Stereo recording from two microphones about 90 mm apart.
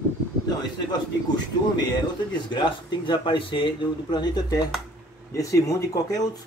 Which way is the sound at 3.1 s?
65° left (ahead or behind).